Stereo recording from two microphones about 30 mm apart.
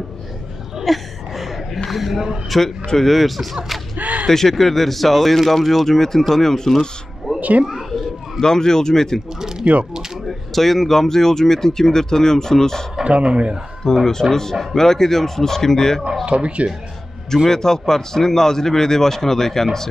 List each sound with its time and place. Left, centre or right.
0.8 s a sound: centre
1.9 s speech: centre
4.0 s a sound: right
4.3 s speech: centre
7.3 s a woman's voice: right
7.6 s a sound: centre
8.4 s speech: left
10.2 s speech: centre
13.0 s speech: right
13.9 s speech: left
16.3 s speech: right
17.5 s speech: centre